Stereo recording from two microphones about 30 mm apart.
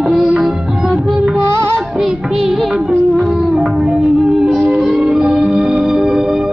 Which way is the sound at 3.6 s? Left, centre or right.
Centre.